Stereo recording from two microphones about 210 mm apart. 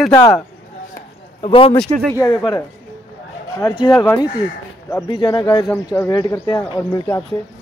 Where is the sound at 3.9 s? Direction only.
10° left (ahead or behind).